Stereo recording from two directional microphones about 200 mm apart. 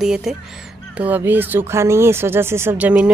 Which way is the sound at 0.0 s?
Centre (ahead or behind).